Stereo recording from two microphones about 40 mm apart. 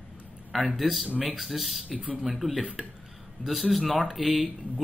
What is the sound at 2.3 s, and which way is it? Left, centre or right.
Speech, centre.